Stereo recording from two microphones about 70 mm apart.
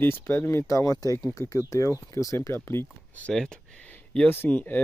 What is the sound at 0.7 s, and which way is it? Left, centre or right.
Speech, left.